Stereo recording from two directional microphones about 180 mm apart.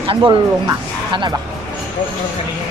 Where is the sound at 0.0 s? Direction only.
30° right (ahead or behind).